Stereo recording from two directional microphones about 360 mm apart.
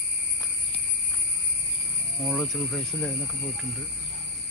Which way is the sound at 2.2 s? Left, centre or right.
Centre.